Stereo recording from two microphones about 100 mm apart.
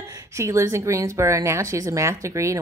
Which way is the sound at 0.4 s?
30° right (ahead or behind).